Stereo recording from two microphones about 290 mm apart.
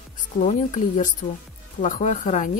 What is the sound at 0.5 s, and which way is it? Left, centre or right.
A woman's voice, left.